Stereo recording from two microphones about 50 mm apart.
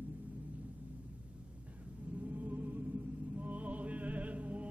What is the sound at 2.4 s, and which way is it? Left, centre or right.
Music, right.